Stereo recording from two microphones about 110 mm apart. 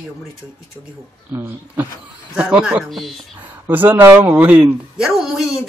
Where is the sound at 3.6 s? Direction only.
15° right (ahead or behind).